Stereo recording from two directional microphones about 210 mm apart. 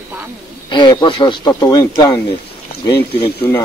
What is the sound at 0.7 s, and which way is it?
Speech, 20° left (ahead or behind).